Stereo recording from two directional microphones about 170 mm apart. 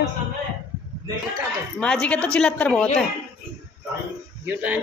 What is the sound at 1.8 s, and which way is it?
A woman's voice, 5° left (ahead or behind).